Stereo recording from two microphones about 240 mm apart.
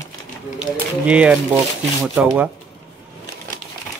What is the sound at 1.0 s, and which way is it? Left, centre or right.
Speech, centre.